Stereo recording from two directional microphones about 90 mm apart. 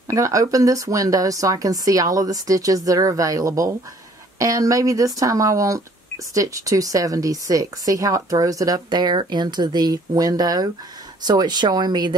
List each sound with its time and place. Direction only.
0.1 s a woman's voice: 35° right (ahead or behind); by 12.2 s 55° right (ahead or behind)